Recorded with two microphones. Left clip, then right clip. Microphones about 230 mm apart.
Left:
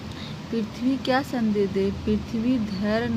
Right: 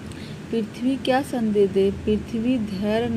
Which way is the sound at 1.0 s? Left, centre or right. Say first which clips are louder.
Right 3 dB; centre.